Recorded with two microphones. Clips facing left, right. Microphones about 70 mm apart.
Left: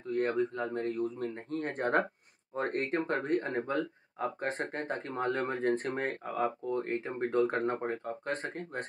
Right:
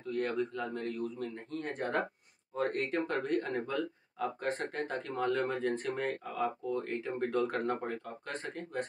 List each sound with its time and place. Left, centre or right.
0.1 s speech: left